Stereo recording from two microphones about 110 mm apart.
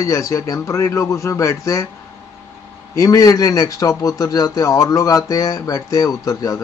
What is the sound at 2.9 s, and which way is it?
A man's voice, 30° left (ahead or behind).